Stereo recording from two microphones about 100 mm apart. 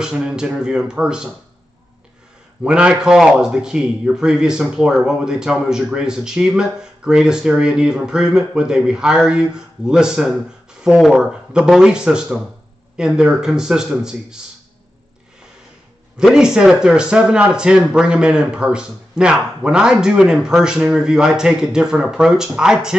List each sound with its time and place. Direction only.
0.0 s a man's voice: 5° right (ahead or behind)
2.6 s a man's voice: 10° right (ahead or behind)
16.2 s a man's voice: 5° right (ahead or behind)